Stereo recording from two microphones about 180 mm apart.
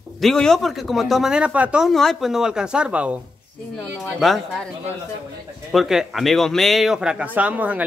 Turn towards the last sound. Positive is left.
turn(degrees=-10)  # may be behind; listen again after turning